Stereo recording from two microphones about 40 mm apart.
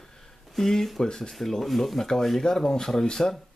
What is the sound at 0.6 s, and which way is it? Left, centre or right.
Speech, centre.